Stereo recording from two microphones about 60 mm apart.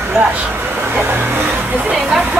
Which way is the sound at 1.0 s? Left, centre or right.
Right.